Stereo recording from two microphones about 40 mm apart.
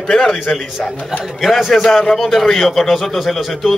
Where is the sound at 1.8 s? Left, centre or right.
Centre.